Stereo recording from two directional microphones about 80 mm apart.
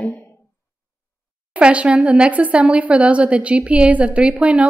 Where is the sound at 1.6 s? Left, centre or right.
Centre.